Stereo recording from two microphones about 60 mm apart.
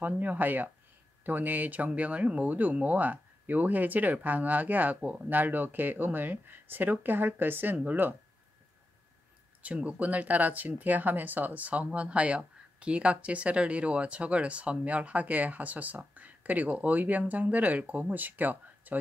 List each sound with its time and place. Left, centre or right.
0.0 s speech: right
9.6 s speech: right